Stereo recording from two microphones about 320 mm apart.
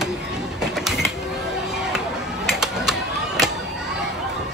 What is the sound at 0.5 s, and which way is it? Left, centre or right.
Music, centre.